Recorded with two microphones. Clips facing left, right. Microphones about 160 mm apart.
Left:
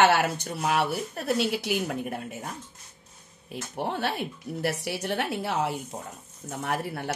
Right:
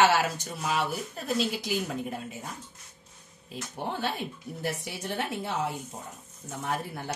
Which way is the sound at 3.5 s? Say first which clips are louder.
Left 3 dB; 65° left (ahead or behind).